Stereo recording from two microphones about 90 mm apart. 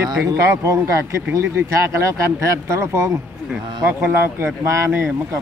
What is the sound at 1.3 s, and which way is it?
Speech, 30° right (ahead or behind).